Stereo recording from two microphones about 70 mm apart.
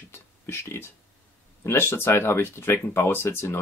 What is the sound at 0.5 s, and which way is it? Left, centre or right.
Speech, left.